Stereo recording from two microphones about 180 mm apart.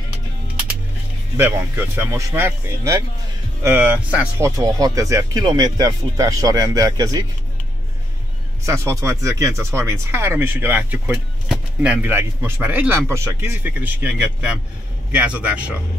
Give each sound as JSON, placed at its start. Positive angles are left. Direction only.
{"t": 2.0, "sound": "speech", "side_deg": -15}
{"t": 8.6, "sound": "speech", "side_deg": -15}